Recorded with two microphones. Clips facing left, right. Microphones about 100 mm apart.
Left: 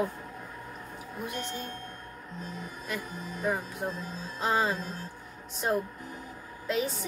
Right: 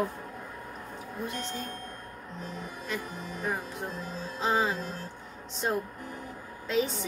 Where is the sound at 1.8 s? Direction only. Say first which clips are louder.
Right 1 dB; 45° right (ahead or behind).